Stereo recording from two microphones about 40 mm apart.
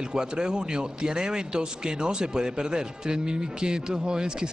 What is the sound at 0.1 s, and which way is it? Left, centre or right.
A man's voice, centre.